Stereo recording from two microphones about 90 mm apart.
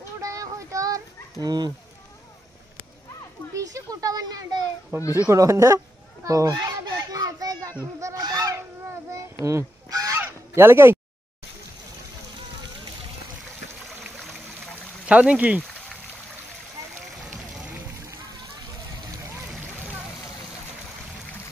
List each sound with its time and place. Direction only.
0.2 s child singing: 35° right (ahead or behind)
1.4 s a child's voice: 50° right (ahead or behind)
3.5 s a child's voice: 40° right (ahead or behind)
4.9 s speech: 30° right (ahead or behind)
6.2 s children playing: 35° right (ahead or behind)
7.8 s speech: 35° right (ahead or behind)
8.2 s honk: 45° right (ahead or behind)
9.1 s honk: 35° right (ahead or behind)
10.2 s goose: 25° right (ahead or behind)
15.0 s speech: 15° right (ahead or behind)
17.2 s music: 5° right (ahead or behind)